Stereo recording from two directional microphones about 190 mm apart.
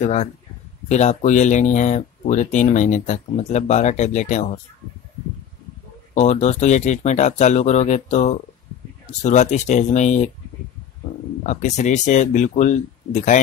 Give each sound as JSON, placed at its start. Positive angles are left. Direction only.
{"t": 0.0, "sound": "speech", "side_deg": 35}
{"t": 6.1, "sound": "speech", "side_deg": 35}
{"t": 11.4, "sound": "speech", "side_deg": 40}